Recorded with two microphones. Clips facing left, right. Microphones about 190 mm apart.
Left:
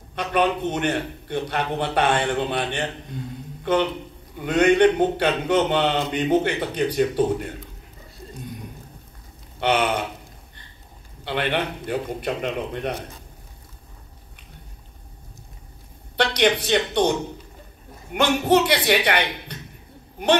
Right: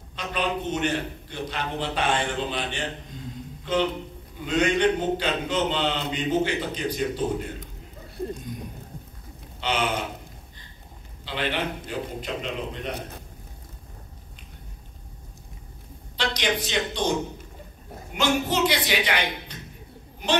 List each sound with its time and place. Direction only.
0.1 s a man's voice: 60° left (ahead or behind)
4.4 s a man's voice: 60° left (ahead or behind)
9.6 s a man's voice: 60° left (ahead or behind)
11.2 s a man's voice: 60° left (ahead or behind)
16.2 s a man's voice: 60° left (ahead or behind)
18.1 s a man's voice: 60° left (ahead or behind)